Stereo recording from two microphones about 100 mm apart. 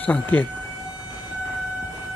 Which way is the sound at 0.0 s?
15° left (ahead or behind).